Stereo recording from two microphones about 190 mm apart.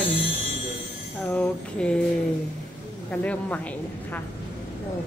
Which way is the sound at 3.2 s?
5° left (ahead or behind).